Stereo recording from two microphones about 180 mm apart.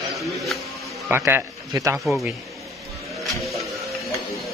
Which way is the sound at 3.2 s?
Centre (ahead or behind).